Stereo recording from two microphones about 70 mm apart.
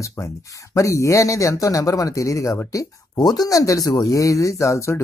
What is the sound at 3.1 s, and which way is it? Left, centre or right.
A woman's voice, left.